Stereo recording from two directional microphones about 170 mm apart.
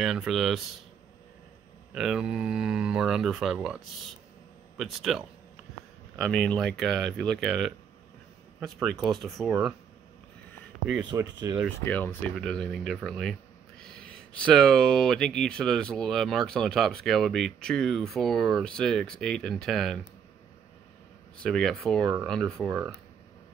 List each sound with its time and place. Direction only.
0.0 s speech: centre (ahead or behind)
2.0 s speech: 5° right (ahead or behind)
8.8 s speech: centre (ahead or behind)
11.1 s speech: 20° right (ahead or behind)
11.8 s speech: 10° left (ahead or behind)
21.4 s speech: 5° left (ahead or behind)